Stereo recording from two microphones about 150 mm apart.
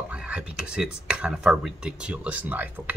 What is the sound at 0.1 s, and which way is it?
Speech, 5° right (ahead or behind).